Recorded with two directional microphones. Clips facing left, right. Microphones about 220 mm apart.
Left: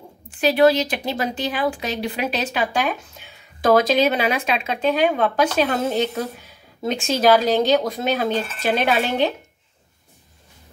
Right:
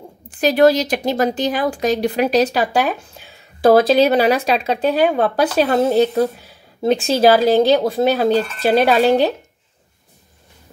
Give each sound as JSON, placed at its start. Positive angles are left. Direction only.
{"t": 0.4, "sound": "speech", "side_deg": -40}